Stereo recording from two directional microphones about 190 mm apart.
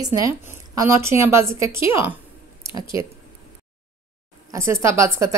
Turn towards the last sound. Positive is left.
turn(degrees=-15)  # may be behind; listen again after turning